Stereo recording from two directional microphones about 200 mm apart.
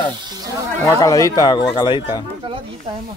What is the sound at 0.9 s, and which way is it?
A man's voice, 15° left (ahead or behind).